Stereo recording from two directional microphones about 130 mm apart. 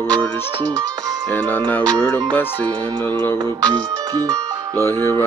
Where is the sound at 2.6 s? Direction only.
35° right (ahead or behind).